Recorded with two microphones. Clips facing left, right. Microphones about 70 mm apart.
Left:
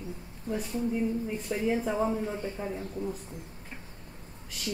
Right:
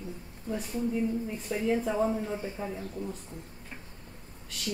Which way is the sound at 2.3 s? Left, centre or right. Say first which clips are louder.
Left 1 dB; centre.